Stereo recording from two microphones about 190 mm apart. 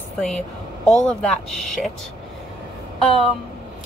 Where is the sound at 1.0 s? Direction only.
5° left (ahead or behind).